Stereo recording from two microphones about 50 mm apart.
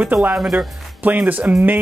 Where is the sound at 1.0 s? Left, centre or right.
Right.